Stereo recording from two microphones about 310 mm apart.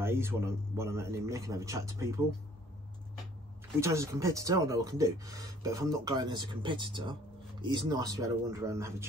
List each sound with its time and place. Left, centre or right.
0.0 s speech: centre
3.8 s speech: centre